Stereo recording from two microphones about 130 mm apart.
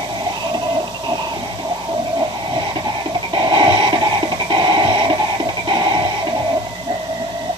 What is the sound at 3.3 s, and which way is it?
Music, 35° right (ahead or behind).